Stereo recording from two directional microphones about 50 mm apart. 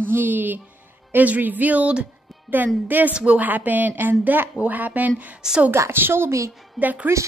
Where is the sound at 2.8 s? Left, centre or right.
Right.